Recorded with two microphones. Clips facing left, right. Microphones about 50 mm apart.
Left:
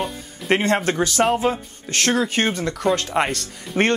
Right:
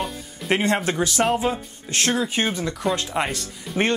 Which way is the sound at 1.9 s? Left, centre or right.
Left.